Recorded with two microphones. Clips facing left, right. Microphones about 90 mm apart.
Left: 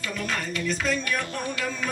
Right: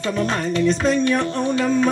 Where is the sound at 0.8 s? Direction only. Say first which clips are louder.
Right 9 dB; 30° right (ahead or behind).